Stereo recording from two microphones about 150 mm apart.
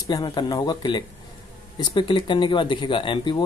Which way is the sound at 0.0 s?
25° left (ahead or behind).